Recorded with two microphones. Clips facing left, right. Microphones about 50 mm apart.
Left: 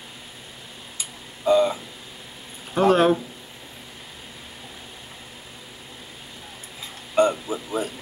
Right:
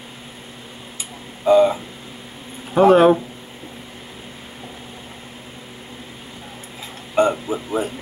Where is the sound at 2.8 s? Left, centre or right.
Centre.